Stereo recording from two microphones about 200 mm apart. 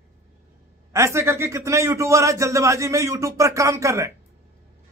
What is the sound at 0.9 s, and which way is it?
Speech, 15° right (ahead or behind).